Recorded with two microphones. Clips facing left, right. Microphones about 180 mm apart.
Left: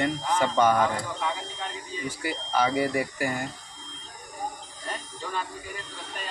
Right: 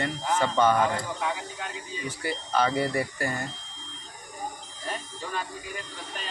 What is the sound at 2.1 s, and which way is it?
Speech, 10° left (ahead or behind).